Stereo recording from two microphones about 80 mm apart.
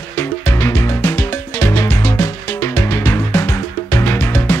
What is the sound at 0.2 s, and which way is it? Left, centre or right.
Music, left.